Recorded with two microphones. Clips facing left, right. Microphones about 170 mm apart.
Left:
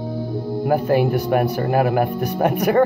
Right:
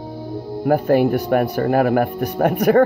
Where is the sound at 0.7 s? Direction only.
50° right (ahead or behind).